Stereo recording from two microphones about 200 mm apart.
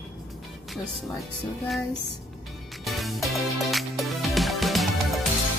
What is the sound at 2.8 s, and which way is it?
Music, centre (ahead or behind).